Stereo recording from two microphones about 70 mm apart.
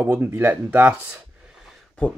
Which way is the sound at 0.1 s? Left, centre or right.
Right.